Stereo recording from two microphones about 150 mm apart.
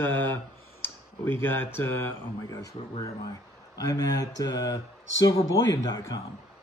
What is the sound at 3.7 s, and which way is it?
Speech, 25° left (ahead or behind).